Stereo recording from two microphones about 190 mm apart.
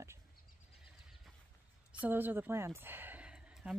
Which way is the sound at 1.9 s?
10° right (ahead or behind).